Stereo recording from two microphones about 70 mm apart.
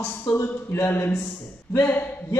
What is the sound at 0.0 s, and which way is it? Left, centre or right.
A man's voice, left.